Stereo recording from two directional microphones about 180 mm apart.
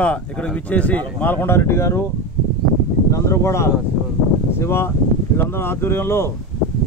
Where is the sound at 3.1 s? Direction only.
15° left (ahead or behind).